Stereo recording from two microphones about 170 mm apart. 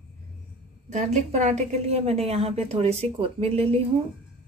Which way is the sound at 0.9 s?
40° right (ahead or behind).